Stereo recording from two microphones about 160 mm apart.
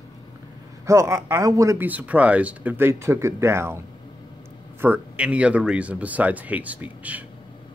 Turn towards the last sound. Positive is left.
turn(degrees=-10)  # may be behind; listen again after turning